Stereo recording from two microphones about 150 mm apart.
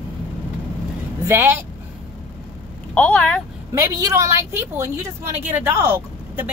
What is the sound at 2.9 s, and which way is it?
Speech, 10° left (ahead or behind).